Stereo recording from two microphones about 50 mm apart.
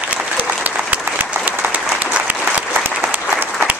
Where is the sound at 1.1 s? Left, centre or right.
Right.